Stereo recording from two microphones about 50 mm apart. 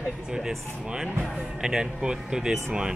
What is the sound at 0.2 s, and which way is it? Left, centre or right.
Air conditioning, centre.